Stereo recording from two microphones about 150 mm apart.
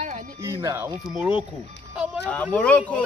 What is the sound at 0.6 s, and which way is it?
Speech, 20° right (ahead or behind).